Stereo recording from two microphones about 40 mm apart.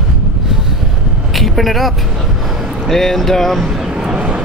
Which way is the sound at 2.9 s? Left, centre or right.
Centre.